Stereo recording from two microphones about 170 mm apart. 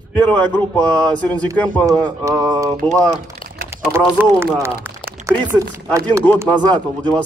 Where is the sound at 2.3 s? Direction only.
20° right (ahead or behind).